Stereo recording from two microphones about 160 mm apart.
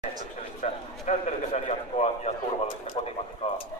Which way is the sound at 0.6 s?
50° left (ahead or behind).